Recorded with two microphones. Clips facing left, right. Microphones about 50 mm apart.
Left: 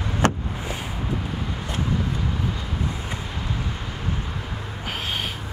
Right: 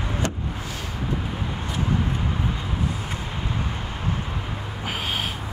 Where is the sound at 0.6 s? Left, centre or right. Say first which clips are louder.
Left 2 dB; centre.